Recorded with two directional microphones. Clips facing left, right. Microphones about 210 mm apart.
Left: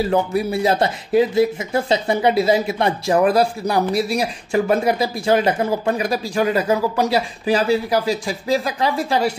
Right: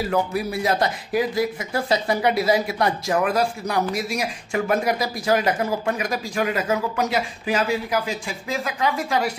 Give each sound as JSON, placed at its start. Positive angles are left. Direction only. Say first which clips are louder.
{"t": 0.0, "sound": "speech", "louder": "left 4 dB", "side_deg": 30}